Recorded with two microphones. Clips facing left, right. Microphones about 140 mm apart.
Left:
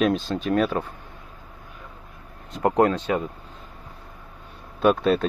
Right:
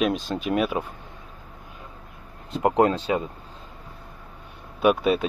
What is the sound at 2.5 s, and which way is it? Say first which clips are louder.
Speech: even; 20° right (ahead or behind).